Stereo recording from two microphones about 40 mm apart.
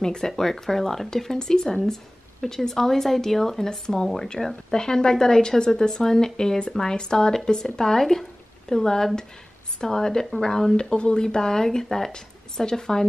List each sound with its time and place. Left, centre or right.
0.0 s speech: centre
10.8 s speech: left